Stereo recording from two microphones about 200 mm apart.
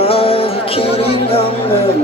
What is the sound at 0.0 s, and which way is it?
Music, 30° left (ahead or behind).